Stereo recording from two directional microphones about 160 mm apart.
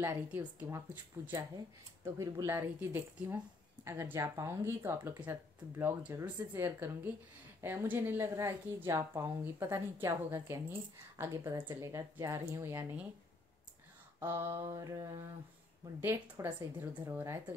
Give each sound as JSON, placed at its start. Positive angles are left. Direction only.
{"t": 0.0, "sound": "speech", "side_deg": -15}
{"t": 14.2, "sound": "mantra", "side_deg": -15}
{"t": 16.0, "sound": "speech", "side_deg": -15}